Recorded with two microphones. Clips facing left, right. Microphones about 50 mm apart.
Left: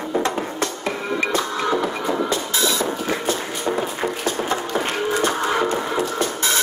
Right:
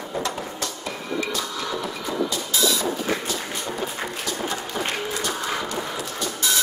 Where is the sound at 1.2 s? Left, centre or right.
Left.